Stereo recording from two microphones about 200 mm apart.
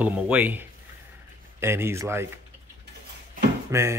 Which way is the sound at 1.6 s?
10° right (ahead or behind).